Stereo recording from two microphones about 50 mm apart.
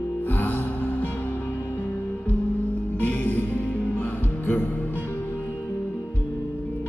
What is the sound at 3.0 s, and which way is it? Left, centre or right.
Music, left.